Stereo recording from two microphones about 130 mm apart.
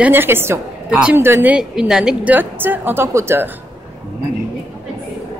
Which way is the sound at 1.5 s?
5° right (ahead or behind).